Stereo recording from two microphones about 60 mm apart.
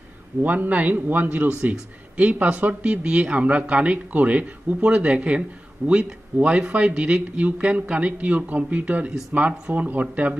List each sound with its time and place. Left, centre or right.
0.4 s a man's voice: right